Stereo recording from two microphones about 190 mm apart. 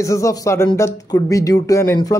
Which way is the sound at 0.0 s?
15° left (ahead or behind).